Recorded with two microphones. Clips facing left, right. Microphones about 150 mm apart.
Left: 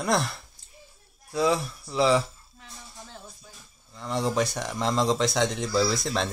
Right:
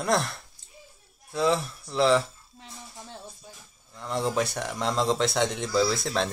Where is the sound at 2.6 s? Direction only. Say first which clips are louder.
Right 3 dB; 20° right (ahead or behind).